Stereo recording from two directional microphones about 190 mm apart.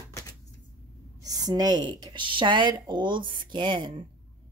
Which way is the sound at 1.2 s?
20° right (ahead or behind).